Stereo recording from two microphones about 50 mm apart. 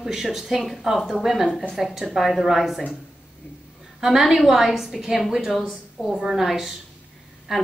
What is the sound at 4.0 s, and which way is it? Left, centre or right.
A woman's voice, centre.